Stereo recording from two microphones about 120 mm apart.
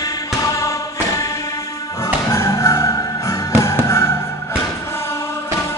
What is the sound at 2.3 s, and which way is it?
Music, 25° left (ahead or behind).